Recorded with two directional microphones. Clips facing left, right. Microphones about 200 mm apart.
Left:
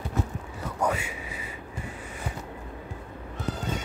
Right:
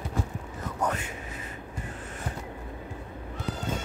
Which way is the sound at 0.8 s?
10° left (ahead or behind).